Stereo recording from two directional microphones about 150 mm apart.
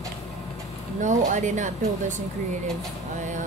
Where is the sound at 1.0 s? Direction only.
55° right (ahead or behind).